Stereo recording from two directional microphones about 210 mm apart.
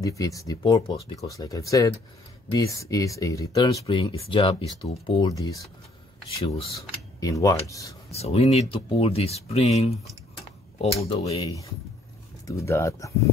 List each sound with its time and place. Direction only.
0.0 s speech: 15° left (ahead or behind)
8.1 s speech: 30° left (ahead or behind)
12.4 s speech: 15° left (ahead or behind)